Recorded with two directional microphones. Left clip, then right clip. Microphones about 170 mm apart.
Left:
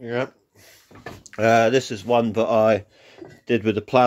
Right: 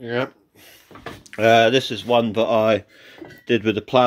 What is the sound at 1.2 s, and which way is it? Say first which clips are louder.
Speech: right 3 dB; 5° left (ahead or behind).